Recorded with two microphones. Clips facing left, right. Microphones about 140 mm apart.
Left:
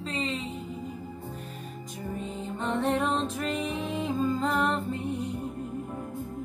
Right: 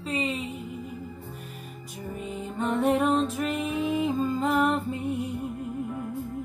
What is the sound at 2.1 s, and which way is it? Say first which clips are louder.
Music: right 2 dB; 10° right (ahead or behind).